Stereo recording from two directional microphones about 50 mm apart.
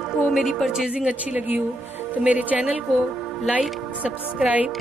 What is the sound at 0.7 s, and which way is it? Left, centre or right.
A woman's voice, centre.